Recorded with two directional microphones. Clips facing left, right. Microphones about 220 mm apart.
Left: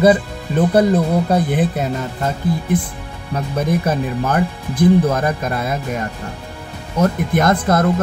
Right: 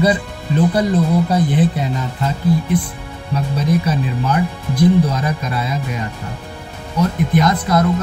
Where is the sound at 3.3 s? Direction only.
50° left (ahead or behind).